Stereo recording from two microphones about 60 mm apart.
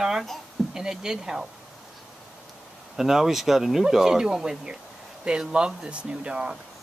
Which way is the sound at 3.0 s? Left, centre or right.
Centre.